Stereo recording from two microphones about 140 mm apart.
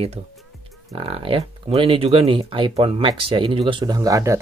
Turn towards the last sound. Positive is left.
turn(degrees=-25)  # may be behind; listen again after turning